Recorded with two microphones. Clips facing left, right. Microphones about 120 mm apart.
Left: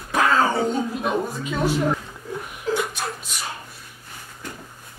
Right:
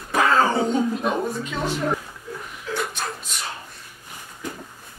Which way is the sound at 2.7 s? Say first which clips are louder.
Left 5 dB; 35° left (ahead or behind).